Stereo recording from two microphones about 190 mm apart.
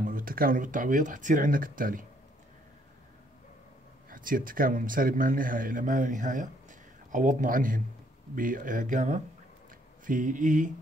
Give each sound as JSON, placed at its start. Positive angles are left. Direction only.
{"t": 0.0, "sound": "a man's voice", "side_deg": -50}
{"t": 4.1, "sound": "a man's voice", "side_deg": -45}